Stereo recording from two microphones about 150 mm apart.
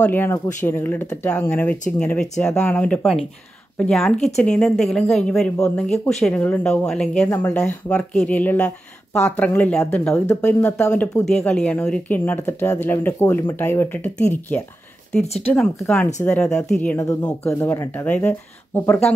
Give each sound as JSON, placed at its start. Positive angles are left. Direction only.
{"t": 0.0, "sound": "speech", "side_deg": 15}
{"t": 7.2, "sound": "speech", "side_deg": 20}
{"t": 7.5, "sound": "speech", "side_deg": 5}
{"t": 16.9, "sound": "speech", "side_deg": 20}